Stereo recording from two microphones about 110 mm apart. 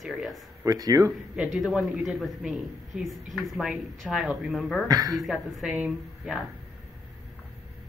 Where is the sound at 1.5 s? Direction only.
Centre (ahead or behind).